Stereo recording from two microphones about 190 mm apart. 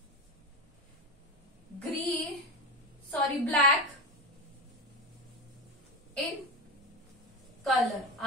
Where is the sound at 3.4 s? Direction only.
Centre (ahead or behind).